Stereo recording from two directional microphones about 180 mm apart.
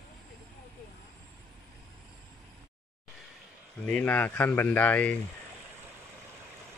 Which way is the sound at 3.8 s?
10° left (ahead or behind).